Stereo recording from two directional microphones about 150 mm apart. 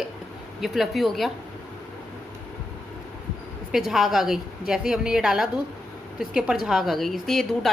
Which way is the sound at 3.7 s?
Centre (ahead or behind).